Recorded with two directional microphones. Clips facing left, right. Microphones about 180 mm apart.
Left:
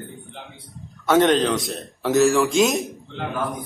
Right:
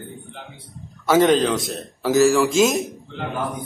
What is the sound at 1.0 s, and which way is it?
Speech, centre (ahead or behind).